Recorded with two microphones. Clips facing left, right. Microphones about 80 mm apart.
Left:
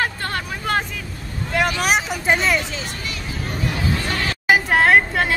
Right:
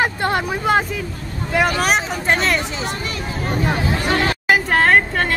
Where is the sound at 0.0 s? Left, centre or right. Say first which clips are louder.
Right 5 dB; centre.